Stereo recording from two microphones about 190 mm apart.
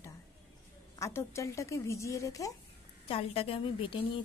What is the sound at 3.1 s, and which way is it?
Speech, 30° left (ahead or behind).